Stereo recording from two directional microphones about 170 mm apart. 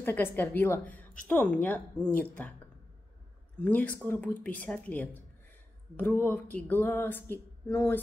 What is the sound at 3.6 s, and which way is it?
Speech, 10° left (ahead or behind).